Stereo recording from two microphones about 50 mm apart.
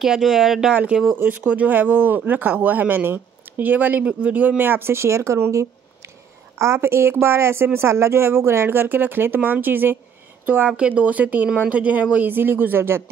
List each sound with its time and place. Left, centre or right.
0.0 s speech: centre
1.1 s speech: right
5.5 s speech: right
8.6 s speech: right